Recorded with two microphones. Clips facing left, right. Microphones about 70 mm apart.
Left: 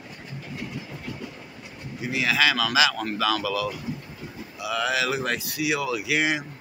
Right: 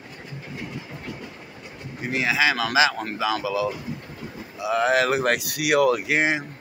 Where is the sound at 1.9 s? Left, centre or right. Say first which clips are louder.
Right 1 dB; right.